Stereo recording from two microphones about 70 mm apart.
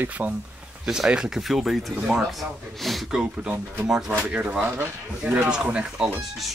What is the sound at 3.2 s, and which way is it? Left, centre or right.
Speech, centre.